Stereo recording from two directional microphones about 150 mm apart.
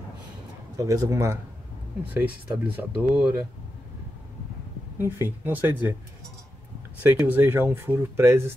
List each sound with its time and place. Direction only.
0.7 s speech: 25° right (ahead or behind)
4.9 s speech: 15° right (ahead or behind)
7.0 s speech: 15° right (ahead or behind)